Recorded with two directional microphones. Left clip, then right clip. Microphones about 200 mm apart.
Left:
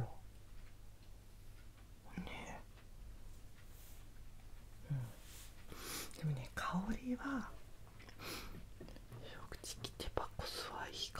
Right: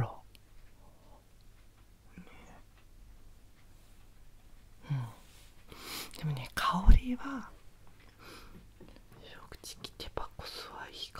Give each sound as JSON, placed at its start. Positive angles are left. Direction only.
{"t": 2.1, "sound": "whispering", "side_deg": 15}
{"t": 5.7, "sound": "whispering", "side_deg": -15}
{"t": 7.2, "sound": "whispering", "side_deg": -5}
{"t": 8.2, "sound": "a sound", "side_deg": 10}
{"t": 8.9, "sound": "whispering", "side_deg": -5}